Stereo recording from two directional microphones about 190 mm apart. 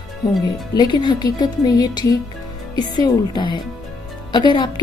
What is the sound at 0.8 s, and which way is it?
Speech, 20° left (ahead or behind).